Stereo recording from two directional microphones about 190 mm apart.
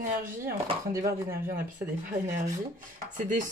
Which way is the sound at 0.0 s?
45° right (ahead or behind).